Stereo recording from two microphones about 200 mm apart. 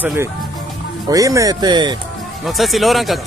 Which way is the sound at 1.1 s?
15° right (ahead or behind).